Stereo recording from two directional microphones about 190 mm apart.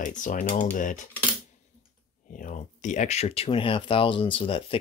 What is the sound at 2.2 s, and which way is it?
Speech, 45° left (ahead or behind).